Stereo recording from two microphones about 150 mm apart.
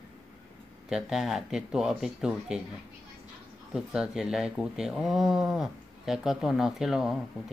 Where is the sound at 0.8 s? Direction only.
5° right (ahead or behind).